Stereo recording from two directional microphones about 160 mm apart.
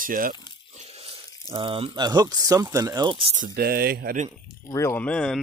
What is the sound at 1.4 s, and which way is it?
Speech, 30° right (ahead or behind).